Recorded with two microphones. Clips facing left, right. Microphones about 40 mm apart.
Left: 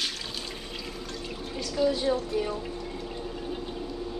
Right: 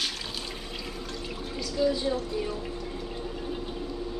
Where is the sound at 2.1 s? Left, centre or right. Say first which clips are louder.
Left 3 dB; left.